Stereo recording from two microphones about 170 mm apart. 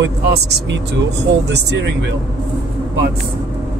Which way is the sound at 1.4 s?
90° right.